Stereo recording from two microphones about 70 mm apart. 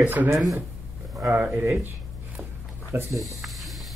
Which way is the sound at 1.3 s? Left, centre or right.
Right.